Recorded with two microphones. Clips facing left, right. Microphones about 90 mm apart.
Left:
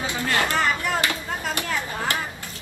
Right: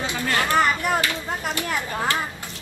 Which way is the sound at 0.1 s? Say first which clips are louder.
Left 1 dB; 20° left (ahead or behind).